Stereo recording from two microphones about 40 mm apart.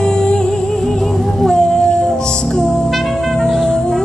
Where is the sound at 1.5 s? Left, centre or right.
Centre.